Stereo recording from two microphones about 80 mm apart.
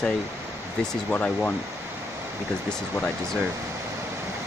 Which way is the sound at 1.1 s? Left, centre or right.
Centre.